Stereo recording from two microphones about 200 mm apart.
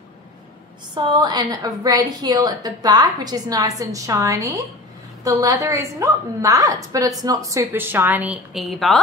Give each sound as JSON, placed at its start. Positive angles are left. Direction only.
{"t": 0.9, "sound": "a woman's voice", "side_deg": -20}